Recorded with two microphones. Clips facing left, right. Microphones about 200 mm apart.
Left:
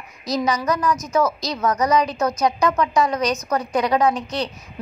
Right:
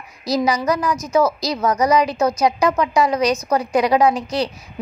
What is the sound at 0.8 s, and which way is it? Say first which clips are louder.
Speech: right 1 dB; 10° right (ahead or behind).